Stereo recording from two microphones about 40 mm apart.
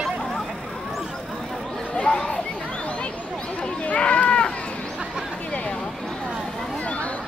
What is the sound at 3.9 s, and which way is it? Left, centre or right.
Run, left.